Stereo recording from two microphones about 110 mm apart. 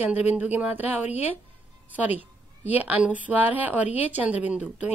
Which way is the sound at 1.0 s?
90° left.